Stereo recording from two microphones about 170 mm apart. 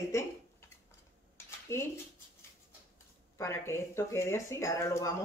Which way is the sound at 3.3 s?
15° left (ahead or behind).